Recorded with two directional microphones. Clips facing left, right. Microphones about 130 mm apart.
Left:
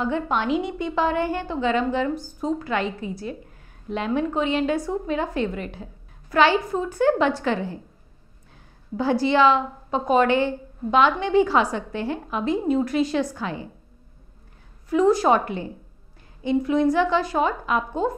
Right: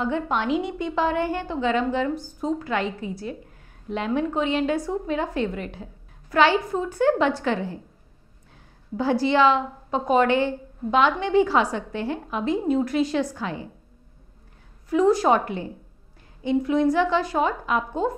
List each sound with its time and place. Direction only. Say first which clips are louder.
0.0 s a woman's voice: left 1 dB; 25° left (ahead or behind)
8.9 s a woman's voice: left 1 dB; 25° left (ahead or behind)
14.9 s a woman's voice: left 1 dB; 25° left (ahead or behind)